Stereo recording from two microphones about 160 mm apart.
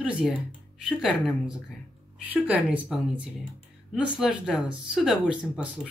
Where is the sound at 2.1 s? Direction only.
10° right (ahead or behind).